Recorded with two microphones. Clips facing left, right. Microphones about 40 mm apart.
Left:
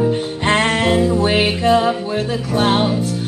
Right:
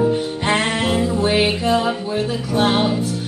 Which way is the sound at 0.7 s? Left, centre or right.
Left.